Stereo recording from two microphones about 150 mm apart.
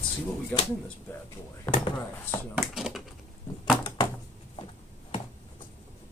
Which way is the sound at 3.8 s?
30° left (ahead or behind).